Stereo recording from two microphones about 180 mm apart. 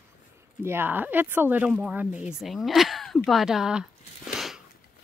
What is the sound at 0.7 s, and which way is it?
Speech, 10° right (ahead or behind).